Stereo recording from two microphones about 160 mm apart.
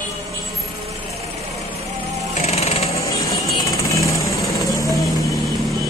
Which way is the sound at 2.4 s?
40° left (ahead or behind).